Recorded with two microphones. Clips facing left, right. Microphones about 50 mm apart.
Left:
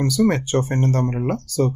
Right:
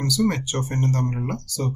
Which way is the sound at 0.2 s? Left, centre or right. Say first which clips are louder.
Left 6 dB; left.